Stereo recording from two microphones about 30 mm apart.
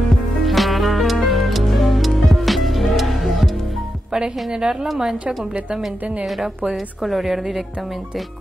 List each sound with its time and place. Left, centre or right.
0.4 s music: centre
4.1 s a woman's voice: right
7.0 s a woman's voice: centre